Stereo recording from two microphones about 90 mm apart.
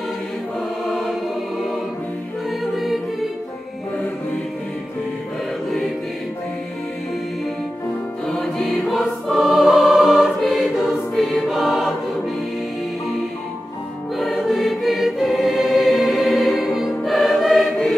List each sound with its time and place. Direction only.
2.6 s music: centre (ahead or behind)
8.3 s music: 5° left (ahead or behind)
11.1 s choir: centre (ahead or behind)
14.1 s choir: centre (ahead or behind)